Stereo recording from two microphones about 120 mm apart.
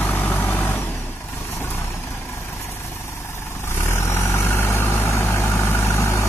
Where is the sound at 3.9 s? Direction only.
20° left (ahead or behind).